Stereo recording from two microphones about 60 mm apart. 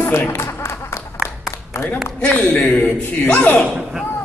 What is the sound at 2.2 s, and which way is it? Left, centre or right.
A man's voice, left.